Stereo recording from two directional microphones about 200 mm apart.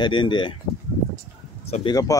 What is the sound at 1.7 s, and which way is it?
Speech, 20° left (ahead or behind).